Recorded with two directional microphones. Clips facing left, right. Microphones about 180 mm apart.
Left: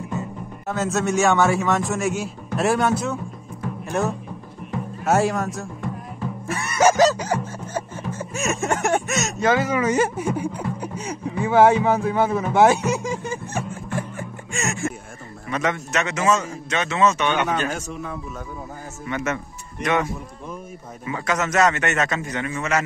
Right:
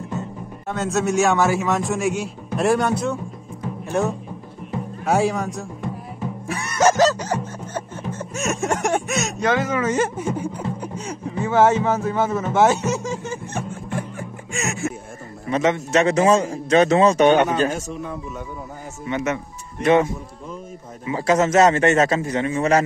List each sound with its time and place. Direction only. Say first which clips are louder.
0.2 s speech: even; centre (ahead or behind)
5.0 s speech: even; centre (ahead or behind)
6.4 s music: even; centre (ahead or behind)
8.1 s a man's voice: even; 5° left (ahead or behind)
12.5 s snicker: left 1 dB; 10° left (ahead or behind)
15.4 s a man's voice: right 5 dB; 25° right (ahead or behind)
19.0 s a man's voice: right 2 dB; 20° right (ahead or behind)